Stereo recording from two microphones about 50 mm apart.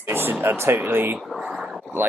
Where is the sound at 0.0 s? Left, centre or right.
Right.